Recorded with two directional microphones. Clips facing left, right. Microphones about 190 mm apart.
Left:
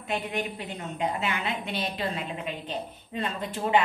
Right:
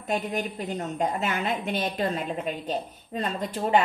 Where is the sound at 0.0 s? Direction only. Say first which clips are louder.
Right 2 dB; 40° right (ahead or behind).